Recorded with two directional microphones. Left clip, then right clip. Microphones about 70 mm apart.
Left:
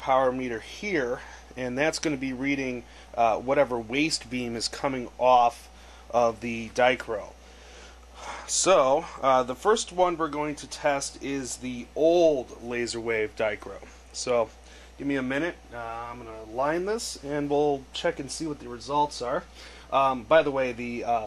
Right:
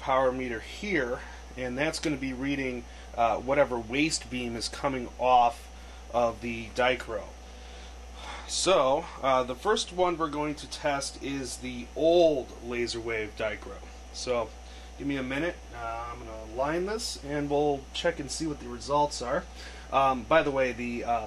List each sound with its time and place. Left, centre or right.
0.0 s speech: left
2.4 s speech: left
8.2 s speech: left
15.0 s speech: left
16.5 s speech: left
18.2 s a man's voice: centre; by 21.2 s left